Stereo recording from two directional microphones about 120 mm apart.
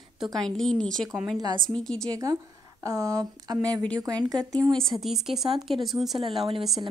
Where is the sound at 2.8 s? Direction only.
30° right (ahead or behind).